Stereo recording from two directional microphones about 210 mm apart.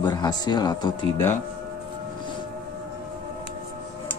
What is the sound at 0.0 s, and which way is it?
Speech, 20° left (ahead or behind).